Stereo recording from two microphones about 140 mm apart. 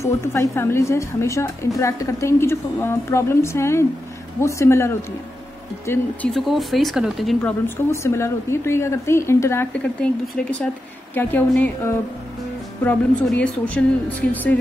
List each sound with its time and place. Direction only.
0.0 s a woman's voice: 20° left (ahead or behind)
6.3 s speech: centre (ahead or behind)
7.6 s a woman's voice: 20° left (ahead or behind)
10.0 s a woman's voice: 10° left (ahead or behind)